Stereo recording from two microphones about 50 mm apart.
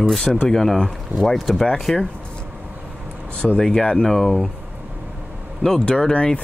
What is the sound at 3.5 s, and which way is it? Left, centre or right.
Speech, centre.